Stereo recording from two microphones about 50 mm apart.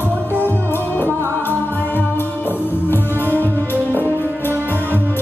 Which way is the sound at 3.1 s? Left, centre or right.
Right.